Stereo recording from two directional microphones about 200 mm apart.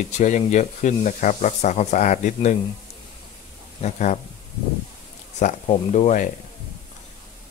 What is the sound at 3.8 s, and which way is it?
Speech, 35° left (ahead or behind).